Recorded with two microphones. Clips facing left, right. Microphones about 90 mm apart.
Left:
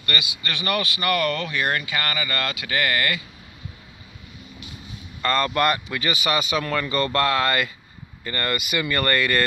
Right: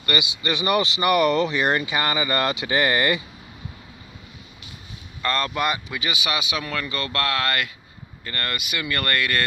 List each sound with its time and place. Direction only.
0.0 s speech: 20° right (ahead or behind)
5.2 s speech: centre (ahead or behind)